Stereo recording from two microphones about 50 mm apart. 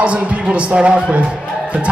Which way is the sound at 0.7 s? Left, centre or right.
Right.